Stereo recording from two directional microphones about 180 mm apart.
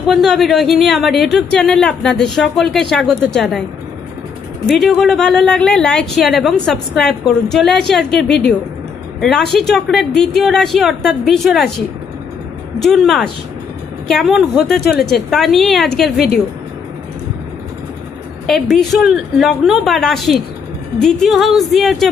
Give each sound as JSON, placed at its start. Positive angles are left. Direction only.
{"t": 0.1, "sound": "speech", "side_deg": 0}
{"t": 4.6, "sound": "speech", "side_deg": 0}
{"t": 8.2, "sound": "a woman's voice", "side_deg": 70}
{"t": 9.6, "sound": "speech", "side_deg": 0}
{"t": 14.9, "sound": "a woman's voice", "side_deg": 60}
{"t": 15.1, "sound": "speech", "side_deg": 0}
{"t": 18.5, "sound": "speech", "side_deg": 0}